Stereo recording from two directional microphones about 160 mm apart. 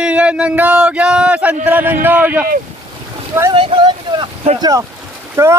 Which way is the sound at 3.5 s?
30° right (ahead or behind).